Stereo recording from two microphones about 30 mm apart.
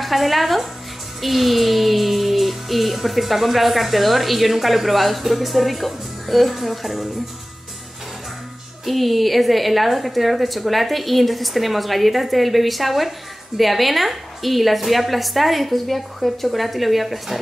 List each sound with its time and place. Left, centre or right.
0.0 s music: centre
8.8 s music: centre